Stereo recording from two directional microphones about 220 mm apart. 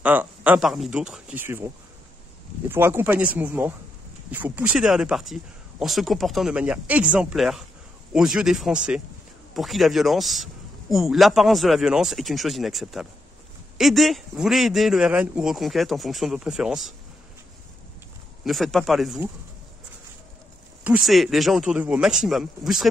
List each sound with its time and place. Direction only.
0.0 s speech: 5° right (ahead or behind)
2.7 s a man's voice: 10° right (ahead or behind)
18.4 s a man's voice: centre (ahead or behind)
20.8 s a man's voice: 5° right (ahead or behind)